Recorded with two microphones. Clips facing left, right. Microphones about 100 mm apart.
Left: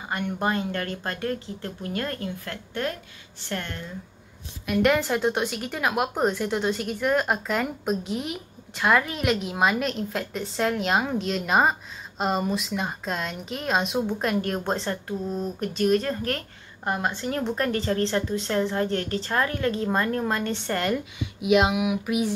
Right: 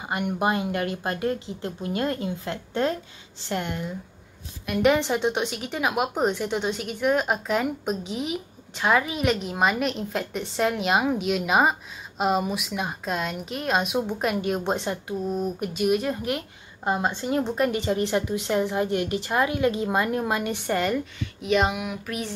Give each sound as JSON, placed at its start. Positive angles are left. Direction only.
{"t": 0.0, "sound": "a woman's voice", "side_deg": -15}
{"t": 4.6, "sound": "a woman's voice", "side_deg": 0}
{"t": 21.0, "sound": "speech", "side_deg": 10}